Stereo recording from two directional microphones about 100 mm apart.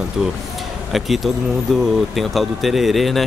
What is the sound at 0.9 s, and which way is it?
Speech, centre (ahead or behind).